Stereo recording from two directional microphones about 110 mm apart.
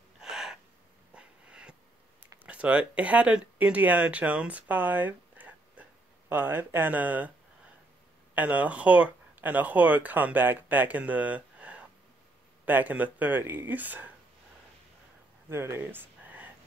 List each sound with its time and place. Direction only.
0.2 s owl: 5° right (ahead or behind)
1.1 s wheeze: 10° right (ahead or behind)
2.4 s speech: 10° right (ahead or behind)
8.4 s speech: 15° right (ahead or behind)
15.5 s speech: 25° right (ahead or behind)